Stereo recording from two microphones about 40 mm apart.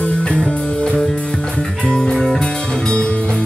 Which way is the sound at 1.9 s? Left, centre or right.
Left.